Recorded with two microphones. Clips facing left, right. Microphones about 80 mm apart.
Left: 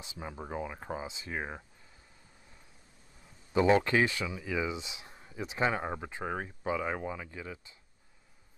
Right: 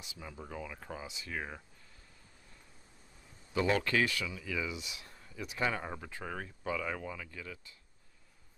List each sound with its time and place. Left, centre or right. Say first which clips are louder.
0.0 s speech: left 5 dB; left
3.5 s speech: left 5 dB; left